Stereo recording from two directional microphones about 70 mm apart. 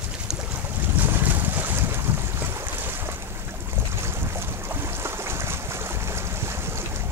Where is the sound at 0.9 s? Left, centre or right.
Right.